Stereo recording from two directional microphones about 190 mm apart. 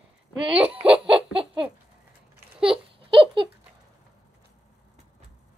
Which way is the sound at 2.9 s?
30° right (ahead or behind).